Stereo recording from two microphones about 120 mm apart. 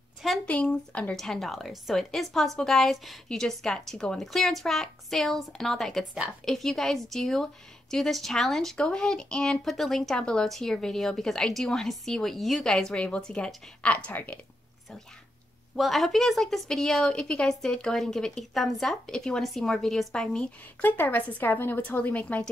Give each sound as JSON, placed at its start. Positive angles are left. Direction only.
{"t": 0.5, "sound": "speech", "side_deg": 10}
{"t": 15.7, "sound": "speech", "side_deg": 0}
{"t": 20.8, "sound": "a woman's voice", "side_deg": 15}